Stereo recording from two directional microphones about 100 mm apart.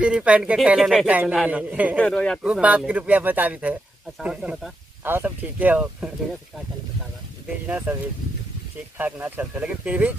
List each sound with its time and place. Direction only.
0.0 s speech: 10° right (ahead or behind)
2.0 s speech: 10° left (ahead or behind)
2.4 s speech: 10° right (ahead or behind)
5.0 s speech: 20° right (ahead or behind)
7.6 s speech: 20° right (ahead or behind)